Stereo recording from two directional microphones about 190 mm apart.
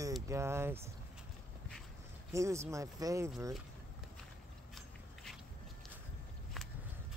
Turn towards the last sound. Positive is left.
turn(degrees=0)  # may be behind; listen again after turning